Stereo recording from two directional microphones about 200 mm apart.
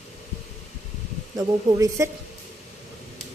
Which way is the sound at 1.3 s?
20° right (ahead or behind).